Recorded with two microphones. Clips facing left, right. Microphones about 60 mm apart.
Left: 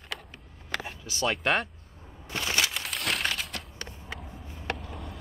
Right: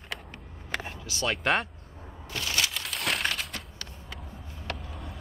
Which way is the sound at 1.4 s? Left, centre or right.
Centre.